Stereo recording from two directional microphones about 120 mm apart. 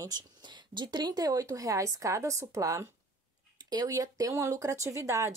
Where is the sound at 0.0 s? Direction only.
35° right (ahead or behind).